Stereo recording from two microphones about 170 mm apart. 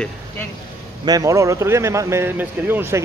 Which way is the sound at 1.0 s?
20° right (ahead or behind).